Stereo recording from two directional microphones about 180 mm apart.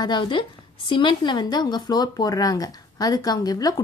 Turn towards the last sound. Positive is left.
turn(degrees=20)  # may be behind; listen again after turning